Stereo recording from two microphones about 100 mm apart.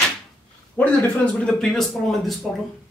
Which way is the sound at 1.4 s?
5° left (ahead or behind).